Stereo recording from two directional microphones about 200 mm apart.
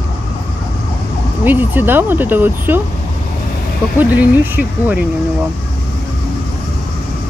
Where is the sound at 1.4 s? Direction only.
10° right (ahead or behind).